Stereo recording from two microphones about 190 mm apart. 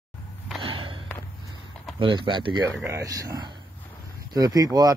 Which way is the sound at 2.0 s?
25° right (ahead or behind).